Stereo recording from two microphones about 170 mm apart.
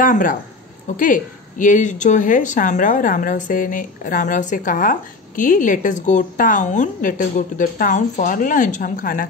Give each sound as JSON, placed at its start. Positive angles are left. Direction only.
{"t": 0.0, "sound": "a woman's voice", "side_deg": 50}